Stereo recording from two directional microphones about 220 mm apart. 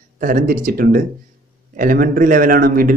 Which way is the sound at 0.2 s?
35° right (ahead or behind).